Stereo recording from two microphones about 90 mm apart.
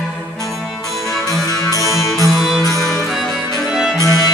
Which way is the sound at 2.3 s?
Centre (ahead or behind).